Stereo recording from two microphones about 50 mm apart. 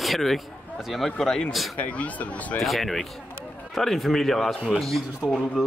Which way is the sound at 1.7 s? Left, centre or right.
Left.